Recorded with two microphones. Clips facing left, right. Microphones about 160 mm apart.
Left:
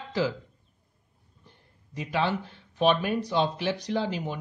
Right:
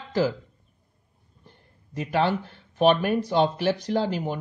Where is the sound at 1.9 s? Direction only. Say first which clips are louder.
Right 4 dB; 50° right (ahead or behind).